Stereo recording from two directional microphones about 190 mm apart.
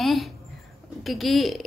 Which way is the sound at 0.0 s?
Centre (ahead or behind).